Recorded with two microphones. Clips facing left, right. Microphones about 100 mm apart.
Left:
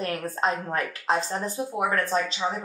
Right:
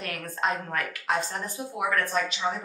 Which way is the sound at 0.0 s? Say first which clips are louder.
Left 4 dB; 35° left (ahead or behind).